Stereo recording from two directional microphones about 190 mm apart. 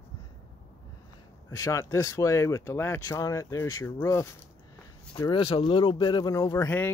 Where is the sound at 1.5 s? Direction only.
15° left (ahead or behind).